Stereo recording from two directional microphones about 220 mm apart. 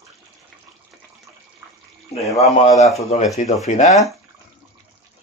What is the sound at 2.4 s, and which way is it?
Speech, 30° left (ahead or behind).